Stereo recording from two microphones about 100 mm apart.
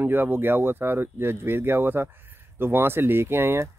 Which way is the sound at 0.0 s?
20° right (ahead or behind).